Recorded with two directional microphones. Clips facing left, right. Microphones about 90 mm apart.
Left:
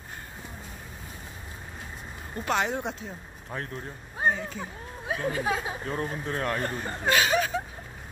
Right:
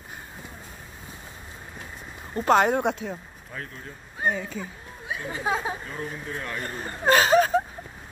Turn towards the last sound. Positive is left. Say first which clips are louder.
# right 6 dB
turn(degrees=-40)  # may be behind; listen again after turning